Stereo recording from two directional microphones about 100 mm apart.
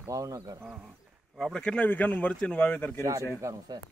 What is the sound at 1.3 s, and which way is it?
Speech, 5° left (ahead or behind).